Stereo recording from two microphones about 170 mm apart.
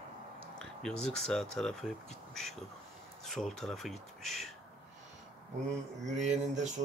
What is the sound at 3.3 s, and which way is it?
Speech, centre (ahead or behind).